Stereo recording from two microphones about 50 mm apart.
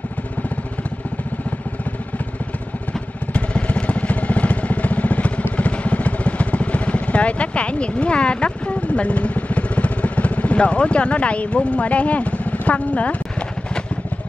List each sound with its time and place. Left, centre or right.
2.9 s vehicle: left